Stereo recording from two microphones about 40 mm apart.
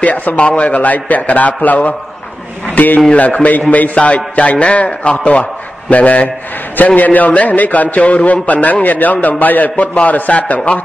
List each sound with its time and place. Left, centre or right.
0.0 s a man's voice: left
0.4 s a man's voice: left
3.2 s a man's voice: left